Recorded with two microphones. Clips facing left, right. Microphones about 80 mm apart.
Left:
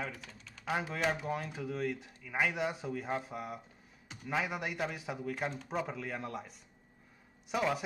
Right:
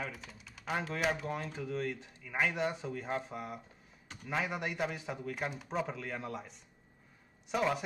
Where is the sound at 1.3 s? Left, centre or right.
Centre.